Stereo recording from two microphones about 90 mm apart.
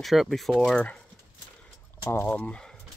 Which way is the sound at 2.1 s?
25° left (ahead or behind).